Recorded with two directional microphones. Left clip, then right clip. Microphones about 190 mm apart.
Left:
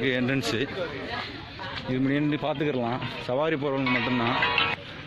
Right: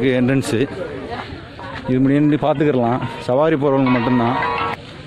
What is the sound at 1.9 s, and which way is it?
Speech, 40° right (ahead or behind).